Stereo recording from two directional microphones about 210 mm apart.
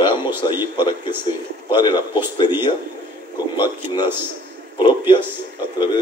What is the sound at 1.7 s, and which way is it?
Speech, 20° left (ahead or behind).